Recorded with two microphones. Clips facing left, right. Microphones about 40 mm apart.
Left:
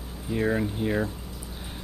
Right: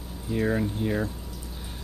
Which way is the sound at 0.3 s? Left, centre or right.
Centre.